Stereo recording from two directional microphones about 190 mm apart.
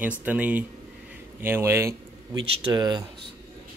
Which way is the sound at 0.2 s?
10° right (ahead or behind).